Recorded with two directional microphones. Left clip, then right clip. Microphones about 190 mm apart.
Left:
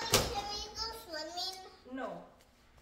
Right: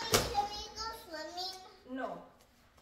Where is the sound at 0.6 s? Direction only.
35° left (ahead or behind).